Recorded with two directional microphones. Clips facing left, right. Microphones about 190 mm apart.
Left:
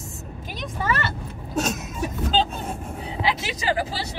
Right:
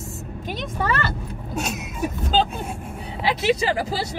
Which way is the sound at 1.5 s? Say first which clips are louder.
Left 3 dB; 10° right (ahead or behind).